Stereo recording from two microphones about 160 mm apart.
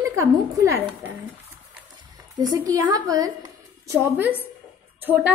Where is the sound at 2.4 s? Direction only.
25° right (ahead or behind).